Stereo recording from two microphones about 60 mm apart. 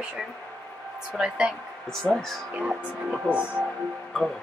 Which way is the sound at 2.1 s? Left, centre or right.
Centre.